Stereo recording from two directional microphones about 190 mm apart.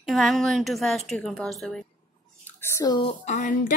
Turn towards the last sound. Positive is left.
turn(degrees=40)  # may be behind; listen again after turning